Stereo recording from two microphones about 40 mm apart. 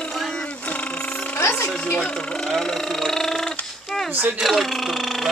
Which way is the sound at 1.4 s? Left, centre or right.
Left.